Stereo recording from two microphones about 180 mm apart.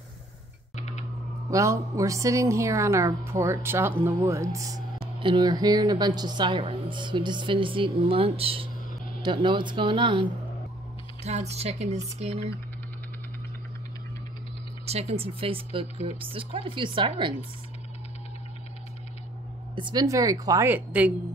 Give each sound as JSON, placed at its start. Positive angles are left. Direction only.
{"t": 0.7, "sound": "music", "side_deg": 40}
{"t": 1.5, "sound": "a woman's voice", "side_deg": -15}
{"t": 11.2, "sound": "speech", "side_deg": -40}
{"t": 14.9, "sound": "speech", "side_deg": -35}
{"t": 19.7, "sound": "a woman's voice", "side_deg": -25}